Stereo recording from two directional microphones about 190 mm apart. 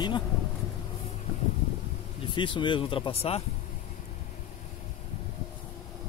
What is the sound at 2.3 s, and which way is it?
Speech, 25° left (ahead or behind).